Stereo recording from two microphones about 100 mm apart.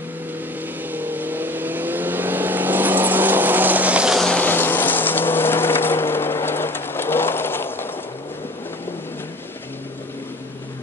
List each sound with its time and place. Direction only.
0.9 s vehicle: 20° right (ahead or behind)
4.2 s boat: 10° left (ahead or behind)
4.5 s a sound: 20° left (ahead or behind)